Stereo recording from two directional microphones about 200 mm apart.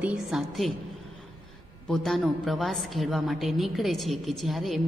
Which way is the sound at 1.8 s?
Centre (ahead or behind).